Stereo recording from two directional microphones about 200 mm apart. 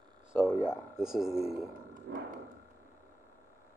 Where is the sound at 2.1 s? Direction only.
55° right (ahead or behind).